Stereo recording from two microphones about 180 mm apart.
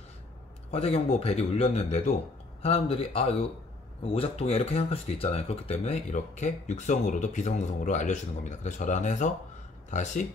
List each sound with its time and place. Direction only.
0.7 s speech: 35° left (ahead or behind)